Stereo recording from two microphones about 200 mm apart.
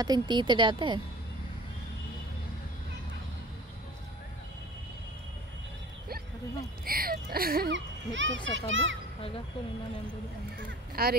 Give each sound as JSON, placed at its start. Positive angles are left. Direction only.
{"t": 0.0, "sound": "speech", "side_deg": -20}
{"t": 6.8, "sound": "a child's voice", "side_deg": -45}
{"t": 11.0, "sound": "speech", "side_deg": -50}